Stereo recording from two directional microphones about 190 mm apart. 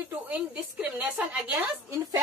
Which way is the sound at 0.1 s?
10° right (ahead or behind).